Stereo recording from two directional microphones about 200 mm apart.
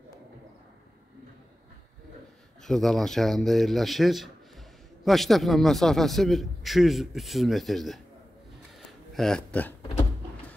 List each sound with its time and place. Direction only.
2.6 s a man's voice: centre (ahead or behind)
9.1 s a man's voice: 5° left (ahead or behind)